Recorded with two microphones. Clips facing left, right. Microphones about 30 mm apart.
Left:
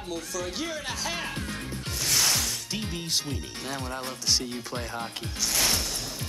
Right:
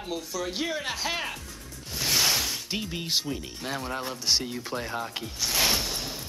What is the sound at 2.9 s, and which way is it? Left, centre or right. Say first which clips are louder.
Speech: right 2 dB; centre.